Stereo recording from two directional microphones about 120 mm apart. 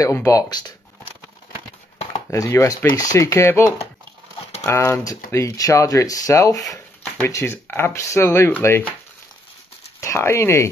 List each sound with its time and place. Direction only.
0.0 s speech: 25° left (ahead or behind)
2.3 s speech: 25° left (ahead or behind)
4.6 s speech: 25° left (ahead or behind)
9.9 s speech: 25° left (ahead or behind)